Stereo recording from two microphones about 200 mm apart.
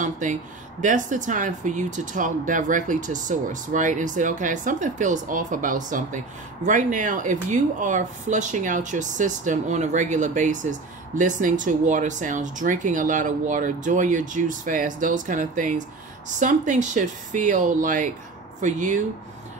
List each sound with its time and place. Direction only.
0.0 s speech: 40° right (ahead or behind)